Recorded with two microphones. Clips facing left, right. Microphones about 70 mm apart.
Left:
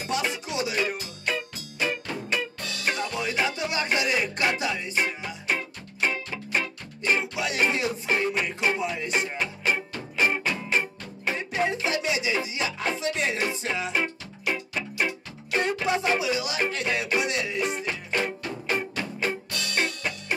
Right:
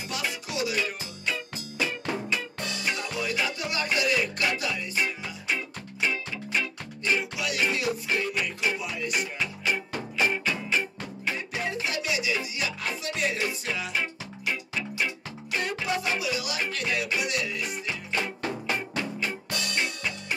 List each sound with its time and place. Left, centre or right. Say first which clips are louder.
0.1 s music: left 5 dB; left
1.2 s music: left 2 dB; left
2.9 s music: left 3 dB; left
5.5 s music: left 2 dB; left
7.2 s music: left 2 dB; left
13.9 s music: left 3 dB; left
15.6 s music: left 4 dB; left
18.8 s music: left 1 dB; left